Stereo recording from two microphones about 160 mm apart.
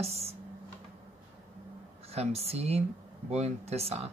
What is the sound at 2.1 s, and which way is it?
Speech, 40° right (ahead or behind).